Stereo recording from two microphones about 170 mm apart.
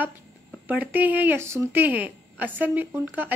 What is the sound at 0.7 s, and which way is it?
A woman's voice, 10° right (ahead or behind).